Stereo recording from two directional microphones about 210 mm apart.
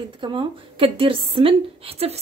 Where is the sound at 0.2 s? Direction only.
20° right (ahead or behind).